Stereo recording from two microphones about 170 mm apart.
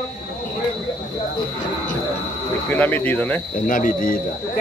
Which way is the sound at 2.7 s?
10° left (ahead or behind).